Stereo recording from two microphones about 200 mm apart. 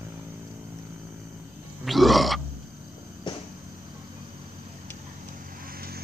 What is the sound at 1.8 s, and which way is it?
Grunt, centre (ahead or behind).